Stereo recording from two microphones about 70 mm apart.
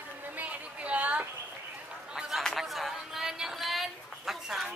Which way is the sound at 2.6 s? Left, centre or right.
Centre.